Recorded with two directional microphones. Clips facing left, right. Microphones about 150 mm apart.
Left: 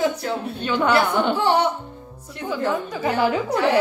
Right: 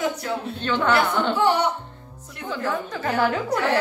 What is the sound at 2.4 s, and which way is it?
Speech, 10° left (ahead or behind).